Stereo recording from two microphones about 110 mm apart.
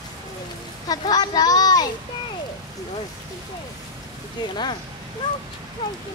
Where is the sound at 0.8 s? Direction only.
35° left (ahead or behind).